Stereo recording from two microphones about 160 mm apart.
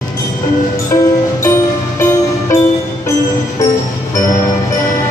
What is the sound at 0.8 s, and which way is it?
Music, 20° left (ahead or behind).